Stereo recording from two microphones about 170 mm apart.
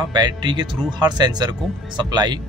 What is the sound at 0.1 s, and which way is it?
Speech, 25° right (ahead or behind).